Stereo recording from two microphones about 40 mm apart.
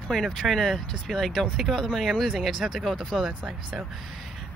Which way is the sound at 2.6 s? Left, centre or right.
Centre.